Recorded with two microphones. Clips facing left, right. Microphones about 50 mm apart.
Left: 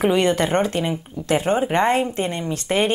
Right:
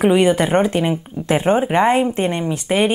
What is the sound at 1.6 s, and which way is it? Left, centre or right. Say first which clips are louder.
Speech: right 3 dB; centre.